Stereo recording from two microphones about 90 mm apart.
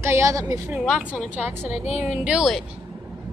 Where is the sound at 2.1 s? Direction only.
15° right (ahead or behind).